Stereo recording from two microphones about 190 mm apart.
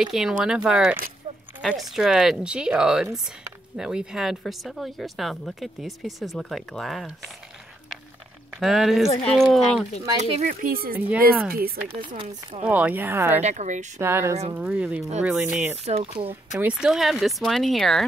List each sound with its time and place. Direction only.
0.0 s speech: 5° right (ahead or behind)
8.5 s speech: centre (ahead or behind)
10.3 s speech: 40° right (ahead or behind)
12.1 s speech: 35° right (ahead or behind)
12.6 s speech: 5° right (ahead or behind)
13.4 s speech: 35° right (ahead or behind)
13.9 s speech: 15° right (ahead or behind)
15.8 s speech: 30° right (ahead or behind)
16.5 s speech: 5° right (ahead or behind)